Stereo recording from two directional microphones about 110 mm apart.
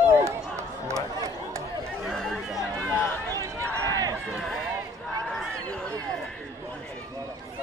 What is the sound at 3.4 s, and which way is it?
Run, 30° right (ahead or behind).